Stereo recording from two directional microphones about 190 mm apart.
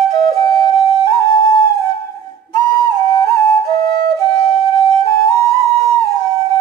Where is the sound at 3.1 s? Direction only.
15° left (ahead or behind).